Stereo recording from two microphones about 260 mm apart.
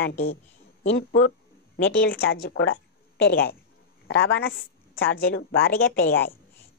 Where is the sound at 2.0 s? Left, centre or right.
Left.